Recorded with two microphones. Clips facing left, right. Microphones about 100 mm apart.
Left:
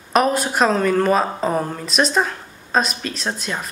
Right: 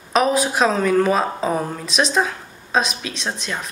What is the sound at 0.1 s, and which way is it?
Speech, centre (ahead or behind).